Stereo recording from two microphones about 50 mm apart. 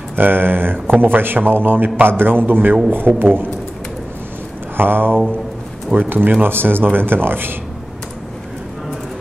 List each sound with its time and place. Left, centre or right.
0.1 s a man's voice: right
4.7 s a man's voice: right